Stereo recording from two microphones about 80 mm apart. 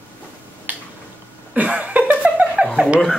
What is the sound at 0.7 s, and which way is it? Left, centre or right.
Finger snapping, right.